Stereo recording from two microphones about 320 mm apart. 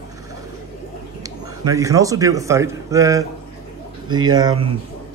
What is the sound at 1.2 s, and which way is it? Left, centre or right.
A man's voice, centre.